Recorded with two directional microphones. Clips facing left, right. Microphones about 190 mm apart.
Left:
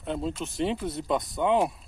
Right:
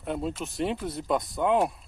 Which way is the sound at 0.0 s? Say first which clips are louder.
Even; 5° right (ahead or behind).